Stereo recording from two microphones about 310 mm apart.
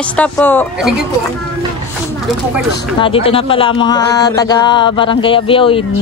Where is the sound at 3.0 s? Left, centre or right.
Centre.